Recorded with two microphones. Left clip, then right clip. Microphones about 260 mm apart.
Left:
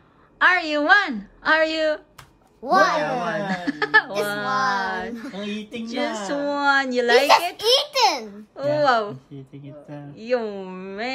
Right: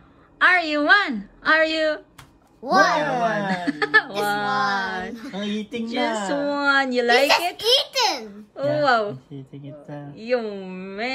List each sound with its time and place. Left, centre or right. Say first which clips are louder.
0.4 s a woman's voice: right 1 dB; centre
7.5 s a child's voice: even; left
8.5 s a woman's voice: even; centre